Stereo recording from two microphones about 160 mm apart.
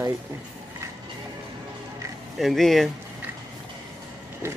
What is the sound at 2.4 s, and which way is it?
Speech, centre (ahead or behind).